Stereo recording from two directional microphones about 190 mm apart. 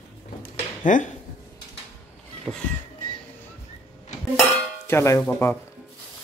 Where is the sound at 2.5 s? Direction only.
10° right (ahead or behind).